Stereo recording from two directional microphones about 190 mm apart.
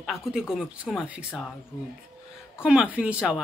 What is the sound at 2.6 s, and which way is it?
Speech, 5° right (ahead or behind).